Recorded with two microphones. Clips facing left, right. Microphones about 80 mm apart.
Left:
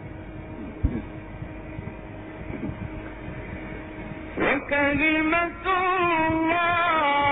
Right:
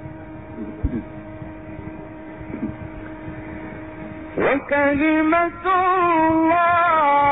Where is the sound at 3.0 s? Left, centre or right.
Right.